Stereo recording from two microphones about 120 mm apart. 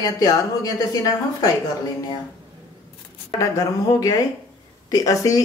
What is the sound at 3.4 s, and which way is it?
A woman's voice, 30° left (ahead or behind).